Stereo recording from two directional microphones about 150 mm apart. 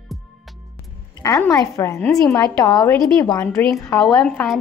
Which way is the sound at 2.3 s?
20° left (ahead or behind).